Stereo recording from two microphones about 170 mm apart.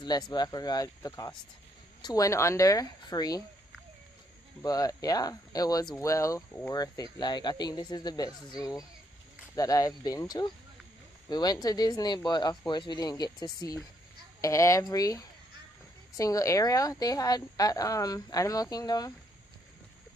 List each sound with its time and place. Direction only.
0.0 s speech: 25° left (ahead or behind)
4.6 s speech: 20° left (ahead or behind)